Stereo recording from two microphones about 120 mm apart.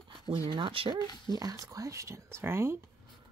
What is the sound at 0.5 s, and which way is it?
Speech, 45° right (ahead or behind).